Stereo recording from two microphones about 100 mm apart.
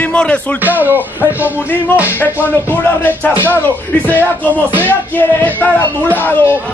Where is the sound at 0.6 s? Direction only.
20° right (ahead or behind).